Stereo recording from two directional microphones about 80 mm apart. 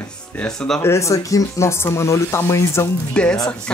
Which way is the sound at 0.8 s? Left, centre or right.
Left.